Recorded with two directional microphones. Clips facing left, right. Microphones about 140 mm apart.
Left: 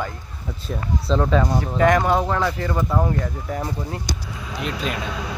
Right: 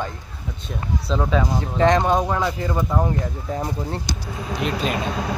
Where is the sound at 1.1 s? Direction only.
5° right (ahead or behind).